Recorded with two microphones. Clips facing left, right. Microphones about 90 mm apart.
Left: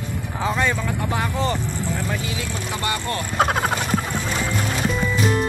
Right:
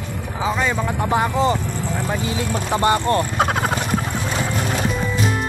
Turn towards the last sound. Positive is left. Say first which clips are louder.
# even
turn(degrees=0)  # may be behind; listen again after turning